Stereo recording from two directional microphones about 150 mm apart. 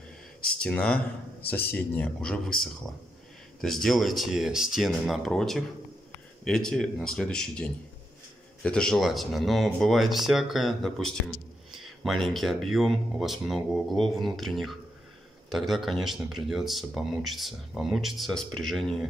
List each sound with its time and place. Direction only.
0.6 s speech: 5° left (ahead or behind)